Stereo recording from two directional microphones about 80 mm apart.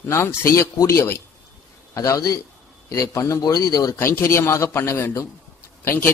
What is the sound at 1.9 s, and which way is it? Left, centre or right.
A man's voice, left.